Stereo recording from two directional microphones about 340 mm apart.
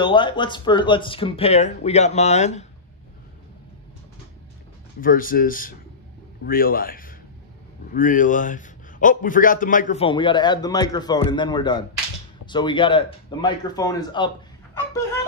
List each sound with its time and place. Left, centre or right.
0.0 s a man's voice: centre
5.0 s a man's voice: left